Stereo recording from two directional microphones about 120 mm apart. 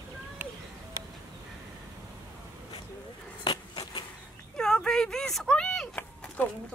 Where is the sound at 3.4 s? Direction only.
35° left (ahead or behind).